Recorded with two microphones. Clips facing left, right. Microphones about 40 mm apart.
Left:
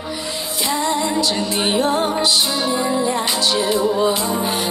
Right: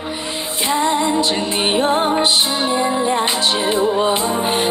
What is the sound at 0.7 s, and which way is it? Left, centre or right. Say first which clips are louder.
Music: right 3 dB; right.